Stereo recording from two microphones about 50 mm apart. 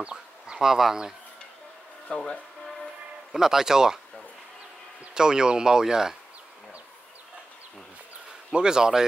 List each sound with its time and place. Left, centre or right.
0.0 s speech: centre
2.0 s speech: centre
3.3 s speech: centre
5.1 s speech: centre
8.5 s speech: centre